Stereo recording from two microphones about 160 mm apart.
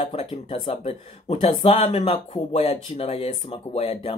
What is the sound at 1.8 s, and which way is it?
Speech, 45° left (ahead or behind).